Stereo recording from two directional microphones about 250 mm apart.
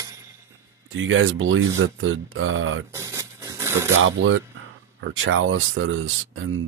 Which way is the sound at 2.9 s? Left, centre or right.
Centre.